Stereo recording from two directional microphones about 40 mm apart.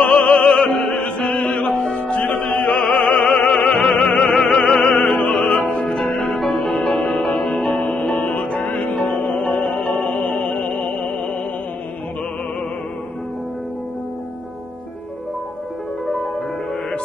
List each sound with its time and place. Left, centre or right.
0.0 s opera: left
1.1 s music: left
2.0 s music: left
2.6 s opera: left
5.6 s music: left
5.9 s music: centre
8.6 s music: left
8.9 s music: centre
10.1 s music: left